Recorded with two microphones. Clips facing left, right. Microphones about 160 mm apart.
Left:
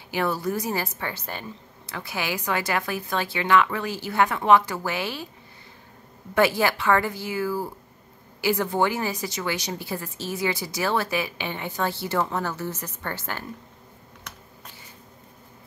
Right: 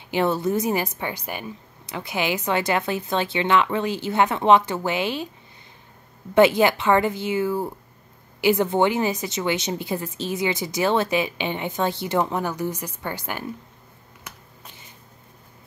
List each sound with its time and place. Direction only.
0.1 s a woman's voice: 20° right (ahead or behind)
6.3 s a woman's voice: 20° right (ahead or behind)
14.3 s shuffling cards: 10° right (ahead or behind)